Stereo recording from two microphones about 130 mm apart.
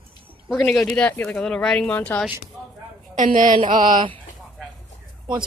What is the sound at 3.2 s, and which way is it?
Speech, 85° right.